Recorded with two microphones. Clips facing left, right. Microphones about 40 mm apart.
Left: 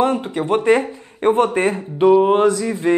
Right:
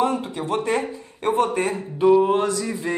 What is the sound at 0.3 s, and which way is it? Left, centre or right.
A man's voice, left.